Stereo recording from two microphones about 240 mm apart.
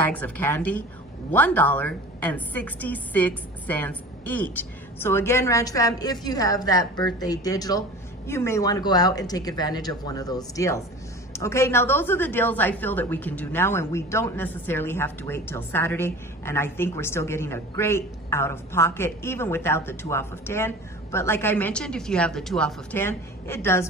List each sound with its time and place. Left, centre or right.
0.0 s a woman's voice: centre